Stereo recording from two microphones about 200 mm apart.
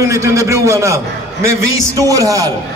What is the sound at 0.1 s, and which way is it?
A man's voice, 15° right (ahead or behind).